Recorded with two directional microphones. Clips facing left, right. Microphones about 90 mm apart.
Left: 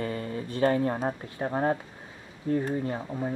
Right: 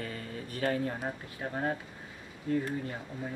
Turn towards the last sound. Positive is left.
turn(degrees=35)  # may be behind; listen again after turning